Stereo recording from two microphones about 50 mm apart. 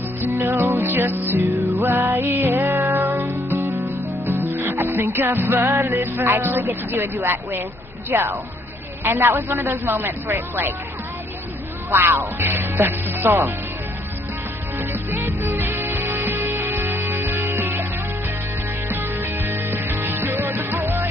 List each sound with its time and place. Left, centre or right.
0.4 s music: right
5.9 s speech: right
11.9 s speech: right
14.8 s music: right
18.9 s music: right